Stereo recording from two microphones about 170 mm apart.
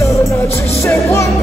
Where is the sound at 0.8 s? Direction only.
15° left (ahead or behind).